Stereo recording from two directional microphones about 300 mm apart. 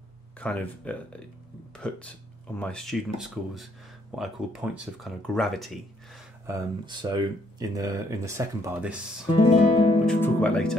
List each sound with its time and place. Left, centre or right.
0.4 s speech: centre
6.4 s speech: centre
9.3 s guitar: centre
10.0 s speech: centre